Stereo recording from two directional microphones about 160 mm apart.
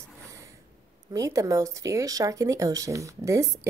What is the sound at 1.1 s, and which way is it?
Speech, 20° right (ahead or behind).